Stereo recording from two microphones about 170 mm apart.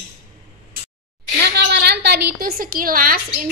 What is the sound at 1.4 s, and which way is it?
A woman's voice, 80° right.